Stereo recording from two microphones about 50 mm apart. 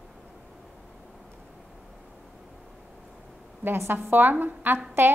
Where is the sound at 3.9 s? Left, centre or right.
Right.